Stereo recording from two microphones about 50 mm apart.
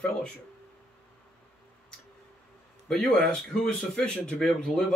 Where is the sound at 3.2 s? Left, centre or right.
Left.